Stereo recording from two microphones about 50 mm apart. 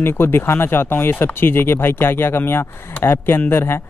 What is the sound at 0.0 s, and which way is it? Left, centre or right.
Speech, left.